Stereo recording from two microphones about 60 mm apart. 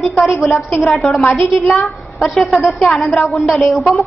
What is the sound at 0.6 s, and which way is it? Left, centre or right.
Speech, left.